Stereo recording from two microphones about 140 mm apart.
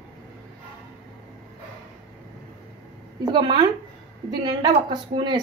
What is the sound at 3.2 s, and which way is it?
A woman's voice, 30° right (ahead or behind).